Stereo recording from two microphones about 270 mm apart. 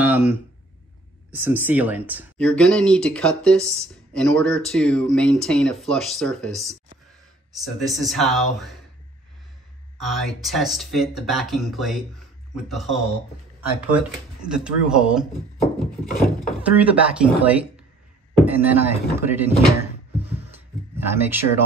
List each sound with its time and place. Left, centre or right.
0.0 s a sound: centre
1.3 s speech: centre
9.9 s speech: centre
14.4 s speech: centre
15.6 s wood: left
16.4 s speech: centre
20.9 s speech: centre